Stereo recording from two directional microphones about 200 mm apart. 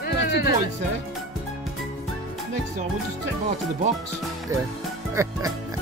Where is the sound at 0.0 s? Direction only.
55° left (ahead or behind).